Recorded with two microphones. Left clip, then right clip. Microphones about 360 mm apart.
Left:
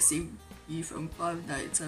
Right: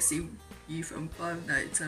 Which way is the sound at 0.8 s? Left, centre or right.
Centre.